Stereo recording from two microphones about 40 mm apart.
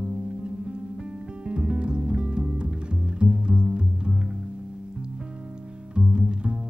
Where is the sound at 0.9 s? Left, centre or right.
Right.